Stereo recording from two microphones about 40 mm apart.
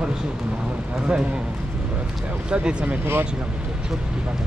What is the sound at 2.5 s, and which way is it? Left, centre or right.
Speech, right.